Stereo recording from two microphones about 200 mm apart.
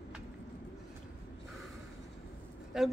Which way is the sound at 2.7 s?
Centre (ahead or behind).